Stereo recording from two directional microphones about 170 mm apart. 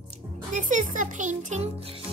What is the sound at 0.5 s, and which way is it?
A child's voice, 50° right (ahead or behind).